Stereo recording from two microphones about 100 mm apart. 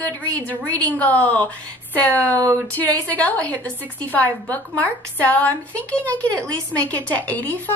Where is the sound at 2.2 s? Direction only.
35° right (ahead or behind).